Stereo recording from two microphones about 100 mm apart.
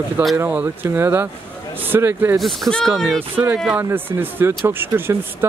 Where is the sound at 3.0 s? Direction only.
5° left (ahead or behind).